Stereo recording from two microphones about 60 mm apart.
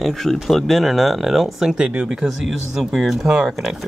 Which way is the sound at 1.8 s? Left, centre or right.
Centre.